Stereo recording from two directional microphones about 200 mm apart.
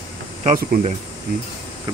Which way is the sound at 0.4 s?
40° right (ahead or behind).